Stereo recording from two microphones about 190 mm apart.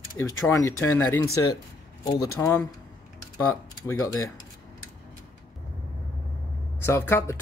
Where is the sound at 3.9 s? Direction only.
15° left (ahead or behind).